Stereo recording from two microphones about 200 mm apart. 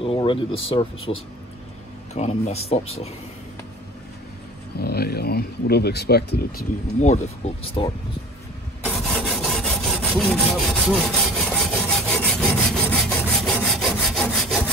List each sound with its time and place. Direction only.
0.0 s speech: 25° left (ahead or behind)
2.1 s speech: 35° left (ahead or behind)
4.7 s speech: 50° left (ahead or behind)
7.0 s speech: 35° left (ahead or behind)
8.8 s sawing: 5° left (ahead or behind)